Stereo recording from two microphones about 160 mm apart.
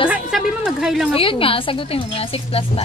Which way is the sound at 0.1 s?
5° right (ahead or behind).